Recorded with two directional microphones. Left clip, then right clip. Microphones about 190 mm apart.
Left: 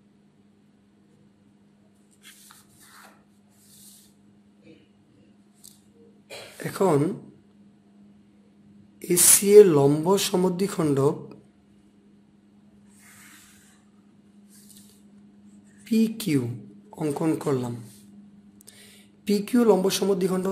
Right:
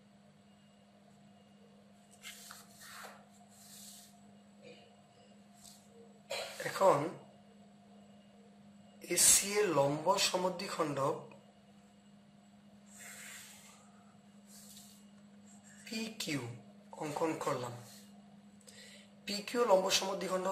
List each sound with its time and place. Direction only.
6.6 s speech: 60° left (ahead or behind)
9.4 s speech: 65° left (ahead or behind)
15.8 s speech: 60° left (ahead or behind)
19.2 s speech: 60° left (ahead or behind)